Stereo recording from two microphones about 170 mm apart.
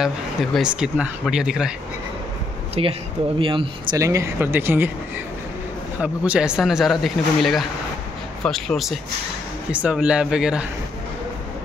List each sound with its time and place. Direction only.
0.0 s speech: centre (ahead or behind)
2.8 s speech: 35° right (ahead or behind)
4.0 s speech: 15° right (ahead or behind)
5.9 s speech: 5° right (ahead or behind)